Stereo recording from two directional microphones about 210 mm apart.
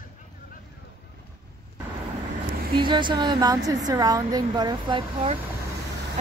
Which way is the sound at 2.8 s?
20° right (ahead or behind).